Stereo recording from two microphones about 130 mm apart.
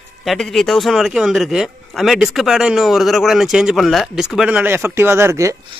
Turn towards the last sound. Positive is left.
turn(degrees=-20)  # may be behind; listen again after turning